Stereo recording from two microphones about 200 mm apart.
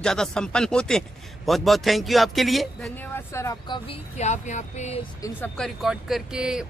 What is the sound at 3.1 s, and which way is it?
Speech, 15° left (ahead or behind).